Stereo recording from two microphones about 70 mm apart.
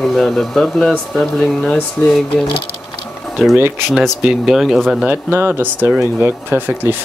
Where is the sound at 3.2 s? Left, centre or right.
Centre.